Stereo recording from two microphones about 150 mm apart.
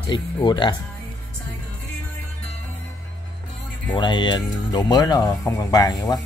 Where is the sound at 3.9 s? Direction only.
30° left (ahead or behind).